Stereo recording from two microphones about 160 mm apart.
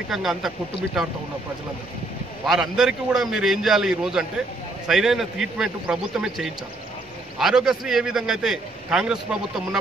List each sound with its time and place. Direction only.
0.1 s a man's voice: centre (ahead or behind)
2.4 s a man's voice: centre (ahead or behind)